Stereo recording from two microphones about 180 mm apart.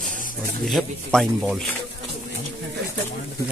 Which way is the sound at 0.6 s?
Centre (ahead or behind).